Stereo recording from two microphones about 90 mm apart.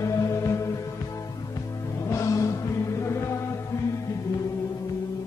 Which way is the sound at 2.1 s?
35° left (ahead or behind).